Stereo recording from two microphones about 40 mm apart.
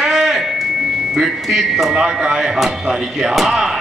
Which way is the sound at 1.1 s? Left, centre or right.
Centre.